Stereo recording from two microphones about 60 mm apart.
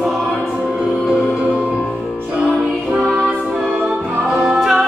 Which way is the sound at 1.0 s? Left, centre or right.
Right.